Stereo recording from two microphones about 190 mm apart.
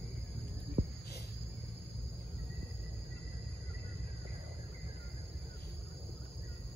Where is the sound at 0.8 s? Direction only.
30° right (ahead or behind).